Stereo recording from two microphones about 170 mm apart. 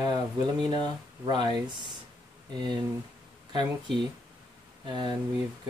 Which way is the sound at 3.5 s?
25° right (ahead or behind).